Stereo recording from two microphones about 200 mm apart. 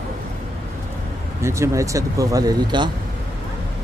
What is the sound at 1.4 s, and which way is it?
Speech, 15° right (ahead or behind).